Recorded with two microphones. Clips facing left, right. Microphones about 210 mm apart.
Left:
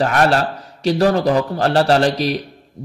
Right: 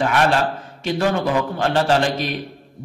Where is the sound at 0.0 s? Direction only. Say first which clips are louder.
Left 2 dB; 40° left (ahead or behind).